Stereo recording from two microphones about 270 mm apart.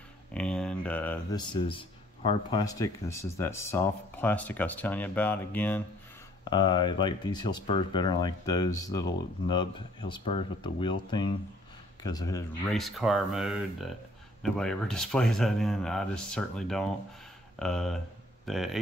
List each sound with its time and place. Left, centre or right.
0.3 s speech: centre
6.5 s speech: centre
12.6 s speech: centre